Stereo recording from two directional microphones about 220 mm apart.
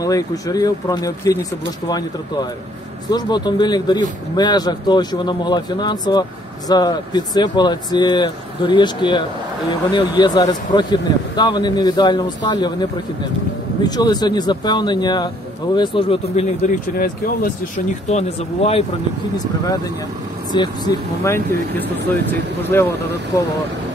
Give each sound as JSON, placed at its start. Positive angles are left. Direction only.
{"t": 0.0, "sound": "speech", "side_deg": 15}
{"t": 13.8, "sound": "speech", "side_deg": 20}
{"t": 16.6, "sound": "speech", "side_deg": 40}
{"t": 18.1, "sound": "speech", "side_deg": 25}
{"t": 20.5, "sound": "speech", "side_deg": 20}